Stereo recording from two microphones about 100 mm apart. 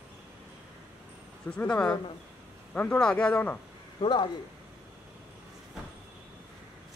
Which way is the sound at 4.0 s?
55° left (ahead or behind).